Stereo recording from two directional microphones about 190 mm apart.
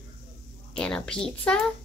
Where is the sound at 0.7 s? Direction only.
5° left (ahead or behind).